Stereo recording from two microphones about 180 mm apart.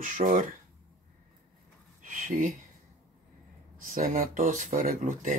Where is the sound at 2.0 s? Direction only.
50° right (ahead or behind).